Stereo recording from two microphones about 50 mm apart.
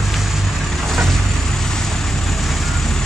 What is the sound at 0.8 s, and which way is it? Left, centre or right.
Vehicle, centre.